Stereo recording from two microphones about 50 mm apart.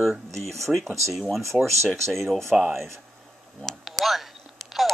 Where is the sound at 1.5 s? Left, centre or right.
Left.